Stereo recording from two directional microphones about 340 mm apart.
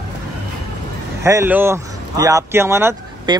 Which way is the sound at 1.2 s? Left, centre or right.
Centre.